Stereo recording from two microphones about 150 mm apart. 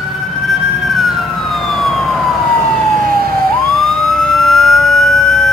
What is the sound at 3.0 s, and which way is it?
Emergency vehicle, 80° right.